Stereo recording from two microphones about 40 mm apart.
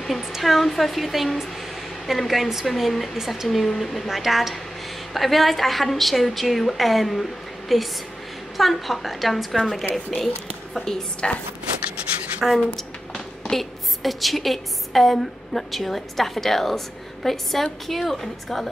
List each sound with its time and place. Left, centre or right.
0.0 s a woman's voice: centre
12.4 s a woman's voice: centre